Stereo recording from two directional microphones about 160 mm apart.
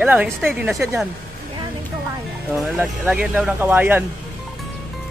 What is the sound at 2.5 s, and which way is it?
A man's voice, 10° right (ahead or behind).